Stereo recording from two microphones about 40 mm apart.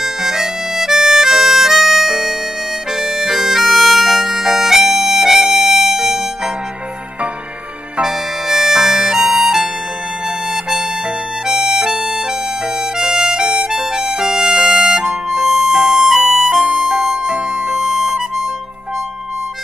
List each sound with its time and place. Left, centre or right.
0.0 s harmonica: centre
3.0 s bagpipes: centre
8.0 s harmonica: centre
11.4 s harmonica: centre
12.9 s music: centre
13.5 s harmonica: right; by 15.0 s centre
15.2 s music: centre
16.2 s music: centre
17.6 s harmonica: centre